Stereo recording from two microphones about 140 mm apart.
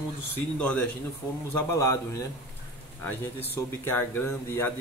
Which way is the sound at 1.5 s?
20° left (ahead or behind).